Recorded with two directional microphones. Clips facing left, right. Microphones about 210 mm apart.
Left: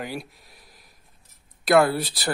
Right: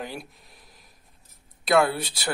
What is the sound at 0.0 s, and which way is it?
Speech, centre (ahead or behind).